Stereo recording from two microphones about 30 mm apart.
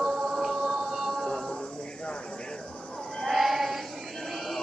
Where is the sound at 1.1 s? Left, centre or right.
Left.